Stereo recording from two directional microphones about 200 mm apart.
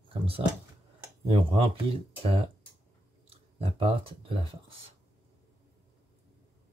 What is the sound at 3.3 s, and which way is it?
Speech, 30° right (ahead or behind).